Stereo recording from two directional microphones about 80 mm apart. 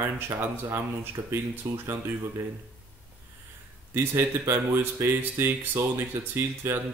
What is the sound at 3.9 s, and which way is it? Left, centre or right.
Speech, right.